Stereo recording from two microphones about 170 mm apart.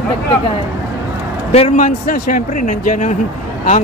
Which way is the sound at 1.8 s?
55° left (ahead or behind).